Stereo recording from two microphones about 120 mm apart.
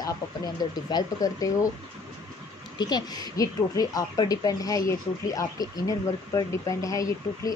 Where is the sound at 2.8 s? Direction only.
35° left (ahead or behind).